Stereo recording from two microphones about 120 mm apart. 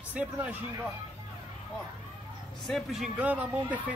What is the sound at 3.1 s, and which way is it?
Speech, 10° right (ahead or behind).